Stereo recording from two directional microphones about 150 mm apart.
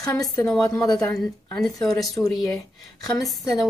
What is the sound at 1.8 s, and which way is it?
Speech, 25° left (ahead or behind).